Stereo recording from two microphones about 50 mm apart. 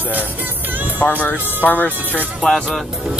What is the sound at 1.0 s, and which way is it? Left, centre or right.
Speech, left.